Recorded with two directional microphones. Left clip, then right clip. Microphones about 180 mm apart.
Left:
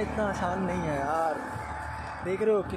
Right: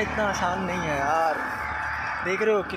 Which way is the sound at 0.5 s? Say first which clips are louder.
Right 4 dB; 5° right (ahead or behind).